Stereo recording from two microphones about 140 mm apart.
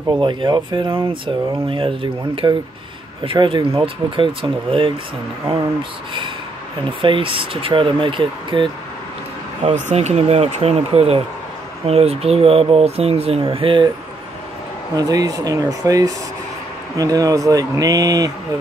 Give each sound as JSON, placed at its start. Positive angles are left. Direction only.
{"t": 0.2, "sound": "speech", "side_deg": -35}
{"t": 7.0, "sound": "speech", "side_deg": -40}
{"t": 9.8, "sound": "speech", "side_deg": -55}
{"t": 15.0, "sound": "speech", "side_deg": -25}